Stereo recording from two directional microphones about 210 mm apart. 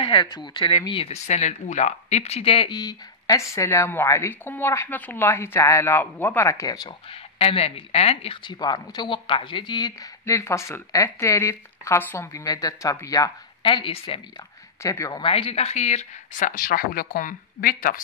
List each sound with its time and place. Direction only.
0.0 s speech: 25° left (ahead or behind)
14.8 s speech: 15° left (ahead or behind); by 18.0 s 40° left (ahead or behind)